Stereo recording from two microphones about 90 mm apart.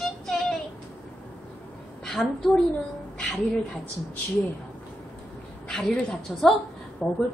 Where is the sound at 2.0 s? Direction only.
5° left (ahead or behind).